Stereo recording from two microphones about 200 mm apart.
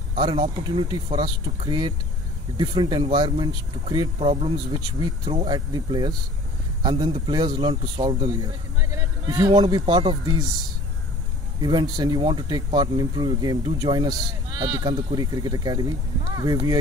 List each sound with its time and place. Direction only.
0.2 s speech: 25° right (ahead or behind)
4.9 s speech: 20° right (ahead or behind)
8.9 s a sound: 20° right (ahead or behind)
9.5 s speech: 20° right (ahead or behind)
11.6 s speech: 20° right (ahead or behind)